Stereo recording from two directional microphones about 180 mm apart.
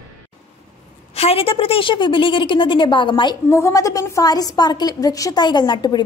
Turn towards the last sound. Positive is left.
turn(degrees=25)  # may be behind; listen again after turning